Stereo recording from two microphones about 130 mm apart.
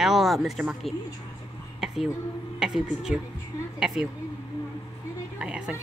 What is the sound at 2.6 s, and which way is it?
Speech, 5° right (ahead or behind).